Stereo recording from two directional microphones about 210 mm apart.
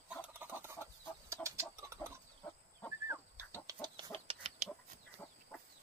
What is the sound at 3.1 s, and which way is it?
Chicken, 15° right (ahead or behind).